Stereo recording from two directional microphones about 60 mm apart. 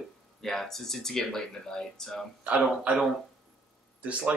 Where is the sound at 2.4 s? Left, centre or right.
Right.